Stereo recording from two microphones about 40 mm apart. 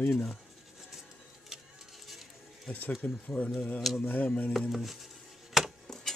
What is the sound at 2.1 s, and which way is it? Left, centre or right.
Music, centre.